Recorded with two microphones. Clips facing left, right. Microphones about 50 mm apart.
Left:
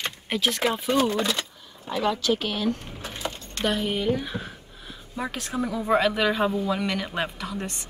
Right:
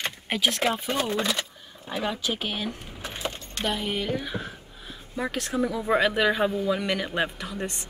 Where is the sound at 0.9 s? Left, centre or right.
Centre.